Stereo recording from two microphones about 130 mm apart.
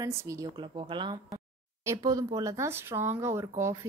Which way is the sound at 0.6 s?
40° right (ahead or behind).